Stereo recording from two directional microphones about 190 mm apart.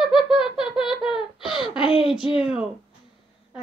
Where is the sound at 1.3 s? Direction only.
25° left (ahead or behind).